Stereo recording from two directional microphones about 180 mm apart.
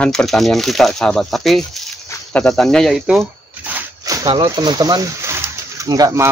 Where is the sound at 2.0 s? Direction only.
5° left (ahead or behind).